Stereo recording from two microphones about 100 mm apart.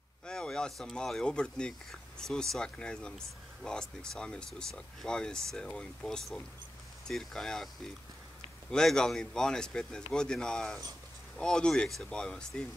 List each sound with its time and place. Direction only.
0.3 s speech: 5° left (ahead or behind)